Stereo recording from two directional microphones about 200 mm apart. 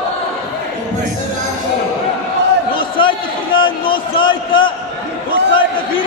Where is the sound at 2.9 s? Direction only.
25° left (ahead or behind).